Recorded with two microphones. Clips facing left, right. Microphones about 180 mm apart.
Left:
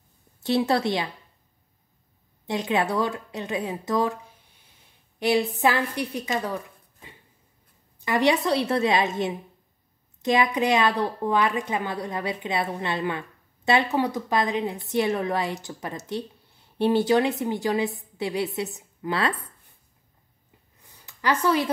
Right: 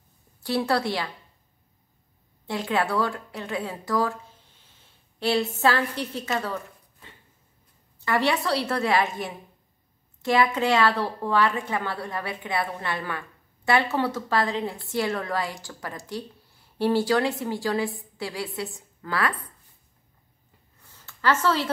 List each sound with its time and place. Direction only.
0.4 s a woman's voice: 20° left (ahead or behind)
2.4 s a woman's voice: 20° left (ahead or behind)
5.2 s a woman's voice: 15° left (ahead or behind)
20.8 s a sound: 15° left (ahead or behind)